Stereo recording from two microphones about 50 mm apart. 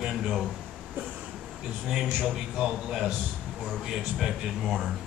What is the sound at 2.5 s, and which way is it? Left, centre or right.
A man's voice, centre.